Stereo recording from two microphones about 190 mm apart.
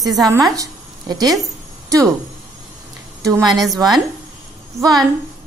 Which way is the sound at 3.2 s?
15° right (ahead or behind).